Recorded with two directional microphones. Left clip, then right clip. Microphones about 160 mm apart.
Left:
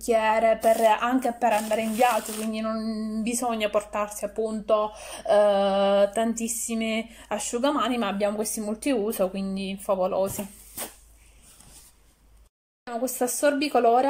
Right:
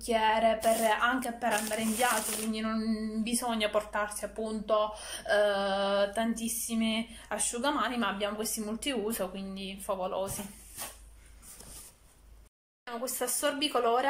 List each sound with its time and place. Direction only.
0.0 s a woman's voice: 15° left (ahead or behind)
12.8 s speech: 15° left (ahead or behind)